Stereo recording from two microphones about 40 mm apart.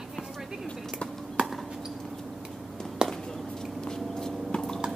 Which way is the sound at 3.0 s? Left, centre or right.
Centre.